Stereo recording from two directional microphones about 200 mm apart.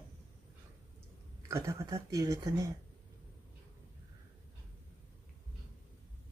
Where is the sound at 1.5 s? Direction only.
15° right (ahead or behind).